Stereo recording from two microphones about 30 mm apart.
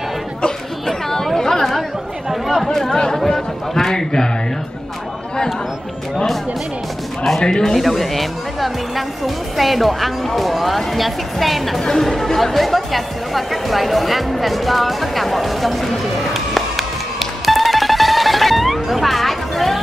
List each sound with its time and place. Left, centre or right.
0.8 s chatter: centre
2.6 s speech: centre
3.3 s a sound: centre
7.3 s speech: centre
7.7 s speech: centre
11.8 s speech: centre
12.5 s speech: centre